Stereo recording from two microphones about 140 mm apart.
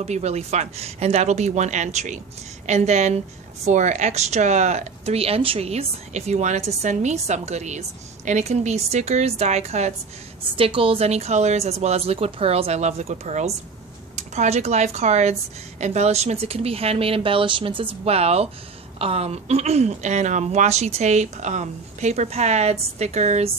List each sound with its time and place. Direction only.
0.0 s a woman's voice: 50° right (ahead or behind)
10.5 s speech: 40° right (ahead or behind)